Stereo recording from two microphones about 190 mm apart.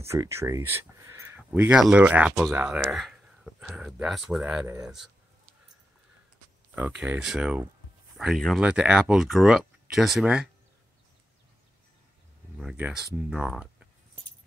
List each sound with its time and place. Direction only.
0.0 s speech: 15° right (ahead or behind)
6.7 s speech: 10° right (ahead or behind)
12.5 s speech: 5° right (ahead or behind)